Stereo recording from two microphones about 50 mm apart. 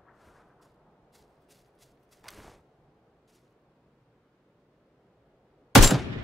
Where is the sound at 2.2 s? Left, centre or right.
Centre.